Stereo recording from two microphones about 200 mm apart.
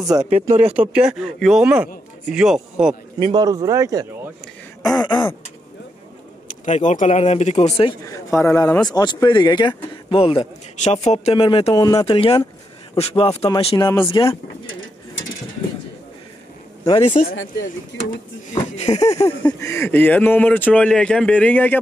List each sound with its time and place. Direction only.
0.6 s speech: 5° right (ahead or behind)
3.2 s speech: 25° right (ahead or behind)
4.8 s speech: 20° left (ahead or behind)
6.6 s speech: 35° left (ahead or behind)
8.1 s speech: 15° left (ahead or behind)
16.8 s speech: 25° left (ahead or behind)
18.5 s speech: 35° left (ahead or behind)
19.4 s speech: 15° left (ahead or behind)